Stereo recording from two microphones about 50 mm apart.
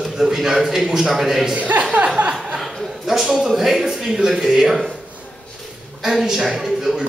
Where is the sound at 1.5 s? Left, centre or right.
Right.